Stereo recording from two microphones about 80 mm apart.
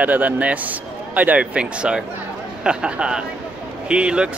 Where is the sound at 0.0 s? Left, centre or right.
Centre.